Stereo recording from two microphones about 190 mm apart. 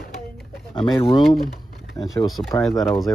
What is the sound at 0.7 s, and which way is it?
Speech, 25° left (ahead or behind).